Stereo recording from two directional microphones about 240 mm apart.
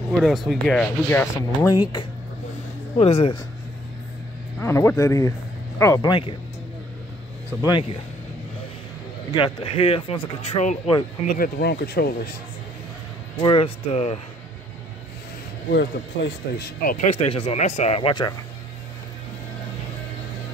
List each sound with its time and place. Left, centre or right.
0.2 s speech: centre
3.0 s speech: left
4.6 s speech: centre
9.3 s speech: centre; by 12.1 s left
13.4 s speech: left
15.7 s speech: left
16.8 s speech: left